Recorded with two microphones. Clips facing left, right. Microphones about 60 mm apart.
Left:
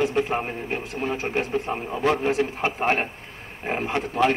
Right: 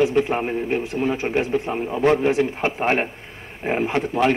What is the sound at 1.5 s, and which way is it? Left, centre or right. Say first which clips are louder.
Speech: right 3 dB; centre.